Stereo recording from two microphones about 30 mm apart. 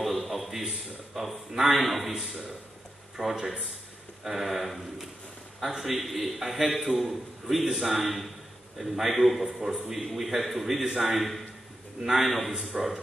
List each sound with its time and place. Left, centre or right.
0.0 s a man's voice: centre
3.2 s a man's voice: right
4.2 s a man's voice: centre
8.0 s a man's voice: centre
12.3 s a man's voice: centre
12.7 s a man's voice: centre